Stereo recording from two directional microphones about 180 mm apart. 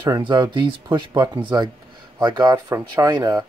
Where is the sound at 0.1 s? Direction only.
25° right (ahead or behind).